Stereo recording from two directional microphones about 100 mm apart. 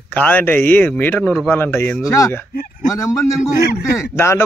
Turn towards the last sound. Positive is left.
turn(degrees=25)  # may be behind; listen again after turning